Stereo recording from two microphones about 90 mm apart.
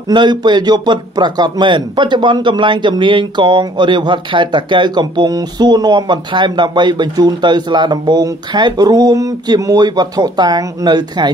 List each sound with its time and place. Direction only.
0.1 s speech: 55° right (ahead or behind)